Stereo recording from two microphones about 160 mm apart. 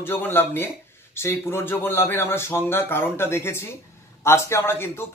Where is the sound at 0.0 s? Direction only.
15° left (ahead or behind).